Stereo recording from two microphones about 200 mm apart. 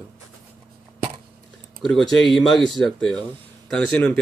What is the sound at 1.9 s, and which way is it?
Speech, centre (ahead or behind).